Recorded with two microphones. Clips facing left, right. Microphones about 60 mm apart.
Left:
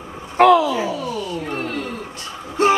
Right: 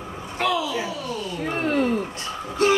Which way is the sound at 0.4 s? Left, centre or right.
Left.